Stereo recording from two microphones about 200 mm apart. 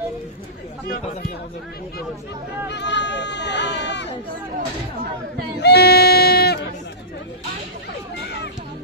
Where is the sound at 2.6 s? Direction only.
60° left (ahead or behind).